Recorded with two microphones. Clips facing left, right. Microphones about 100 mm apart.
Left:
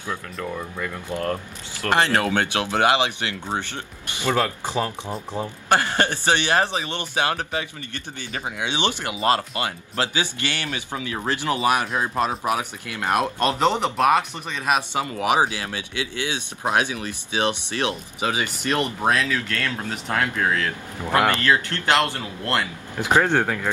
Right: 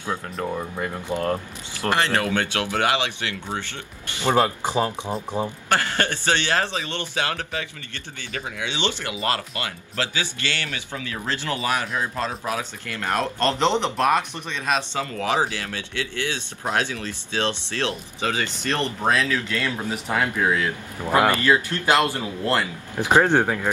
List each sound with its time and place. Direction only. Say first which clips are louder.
0.4 s speech: right 2 dB; 30° right (ahead or behind)
2.5 s speech: left 3 dB; 20° left (ahead or behind)
4.3 s speech: right 3 dB; 20° right (ahead or behind)
5.7 s speech: left 4 dB; 20° left (ahead or behind)
19.1 s speech: right 1 dB; centre (ahead or behind)